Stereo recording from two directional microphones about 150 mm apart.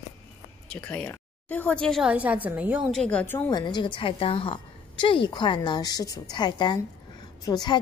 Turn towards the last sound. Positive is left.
turn(degrees=25)  # may be behind; listen again after turning